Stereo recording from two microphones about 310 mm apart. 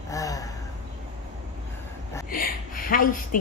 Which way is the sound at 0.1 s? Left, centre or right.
Centre.